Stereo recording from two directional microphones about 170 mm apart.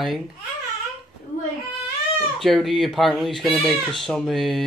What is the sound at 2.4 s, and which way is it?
Speech, centre (ahead or behind).